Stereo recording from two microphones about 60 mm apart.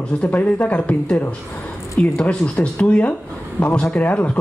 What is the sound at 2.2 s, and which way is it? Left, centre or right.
Speech, left.